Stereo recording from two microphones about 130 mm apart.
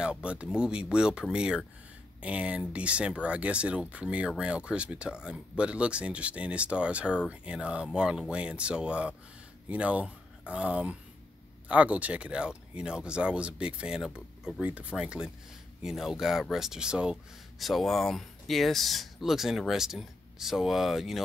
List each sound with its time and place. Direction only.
0.0 s speech: 5° right (ahead or behind)